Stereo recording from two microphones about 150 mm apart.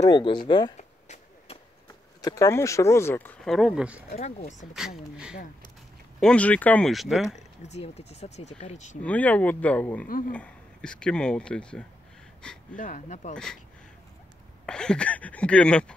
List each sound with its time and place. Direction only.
0.1 s speech: 30° left (ahead or behind)
0.7 s a sound: 50° left (ahead or behind)
2.2 s speech: 20° left (ahead or behind)
3.5 s speech: 5° right (ahead or behind)
4.2 s speech: 50° left (ahead or behind)
4.7 s speech: 5° right (ahead or behind)
6.1 s speech: 5° left (ahead or behind)
7.6 s speech: 45° left (ahead or behind)
9.0 s speech: 10° left (ahead or behind)
10.0 s speech: 70° left (ahead or behind)
10.3 s speech: 5° left (ahead or behind)
12.7 s speech: 60° left (ahead or behind)
14.7 s speech: 5° left (ahead or behind)